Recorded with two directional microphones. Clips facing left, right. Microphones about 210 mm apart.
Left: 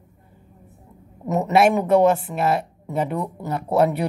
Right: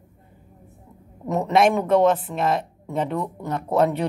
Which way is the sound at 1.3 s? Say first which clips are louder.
Left 1 dB; 5° left (ahead or behind).